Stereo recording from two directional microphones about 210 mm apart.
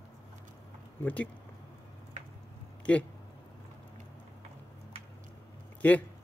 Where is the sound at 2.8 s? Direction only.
5° left (ahead or behind).